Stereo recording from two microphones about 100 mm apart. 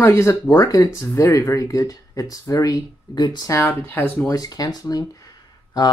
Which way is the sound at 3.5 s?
25° left (ahead or behind).